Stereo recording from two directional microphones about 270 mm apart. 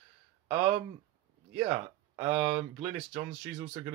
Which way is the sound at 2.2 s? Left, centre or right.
Centre.